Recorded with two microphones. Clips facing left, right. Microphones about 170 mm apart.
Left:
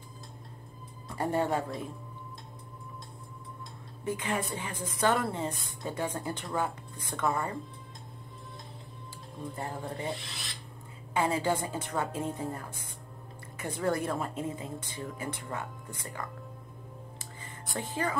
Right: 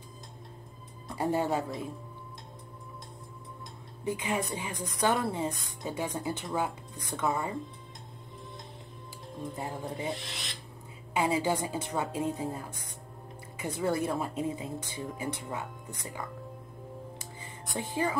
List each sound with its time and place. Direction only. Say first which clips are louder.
1.0 s speech: even; 10° right (ahead or behind)
4.0 s a woman's voice: right 1 dB; 15° right (ahead or behind)
9.6 s a woman's voice: even; 10° right (ahead or behind)
17.4 s music: even; 10° right (ahead or behind)